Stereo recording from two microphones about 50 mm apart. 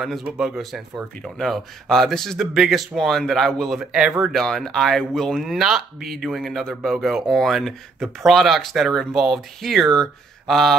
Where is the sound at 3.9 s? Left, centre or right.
Right.